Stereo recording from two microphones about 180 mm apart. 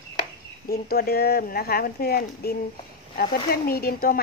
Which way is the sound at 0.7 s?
60° left (ahead or behind).